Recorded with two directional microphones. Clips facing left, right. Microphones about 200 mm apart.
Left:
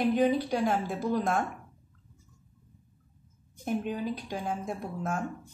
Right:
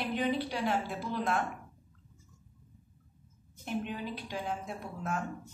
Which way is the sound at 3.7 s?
45° left (ahead or behind).